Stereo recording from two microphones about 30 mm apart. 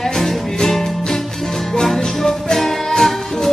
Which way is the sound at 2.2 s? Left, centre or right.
Centre.